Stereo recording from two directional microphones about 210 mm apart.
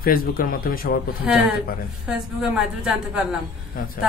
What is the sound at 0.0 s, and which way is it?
Speech, 45° left (ahead or behind).